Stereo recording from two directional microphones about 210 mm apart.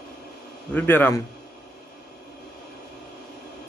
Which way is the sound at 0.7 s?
10° left (ahead or behind).